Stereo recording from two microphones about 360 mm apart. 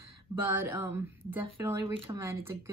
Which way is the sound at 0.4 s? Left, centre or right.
Centre.